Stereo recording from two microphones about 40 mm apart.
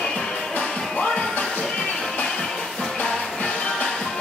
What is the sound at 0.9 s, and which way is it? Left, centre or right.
Music, left.